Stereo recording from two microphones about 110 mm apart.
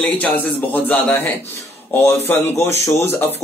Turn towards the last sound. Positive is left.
turn(degrees=20)  # may be behind; listen again after turning